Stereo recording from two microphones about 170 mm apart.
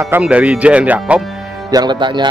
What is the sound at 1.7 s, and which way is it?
Speech, 25° right (ahead or behind).